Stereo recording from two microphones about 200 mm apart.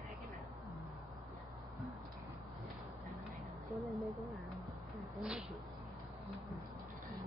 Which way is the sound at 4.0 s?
Centre (ahead or behind).